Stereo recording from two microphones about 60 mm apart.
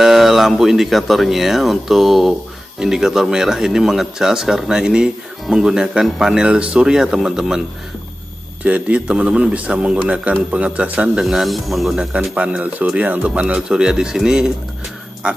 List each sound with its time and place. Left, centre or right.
0.0 s a man's voice: centre
8.6 s a man's voice: right
11.2 s speech: centre
12.0 s a man's voice: centre